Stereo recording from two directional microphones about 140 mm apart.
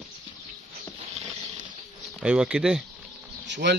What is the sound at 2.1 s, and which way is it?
Speech, 5° right (ahead or behind).